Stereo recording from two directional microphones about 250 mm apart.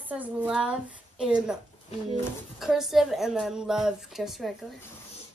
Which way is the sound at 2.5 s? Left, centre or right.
Centre.